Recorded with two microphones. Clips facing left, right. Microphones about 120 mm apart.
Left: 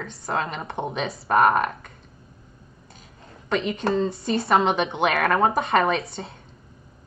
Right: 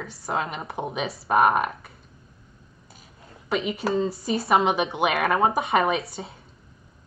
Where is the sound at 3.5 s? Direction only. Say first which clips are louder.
Left 1 dB; 5° right (ahead or behind).